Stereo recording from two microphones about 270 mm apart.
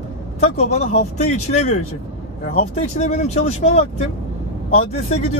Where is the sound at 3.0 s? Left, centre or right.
Left.